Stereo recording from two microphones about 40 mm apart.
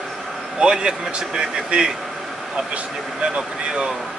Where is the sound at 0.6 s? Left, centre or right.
Right.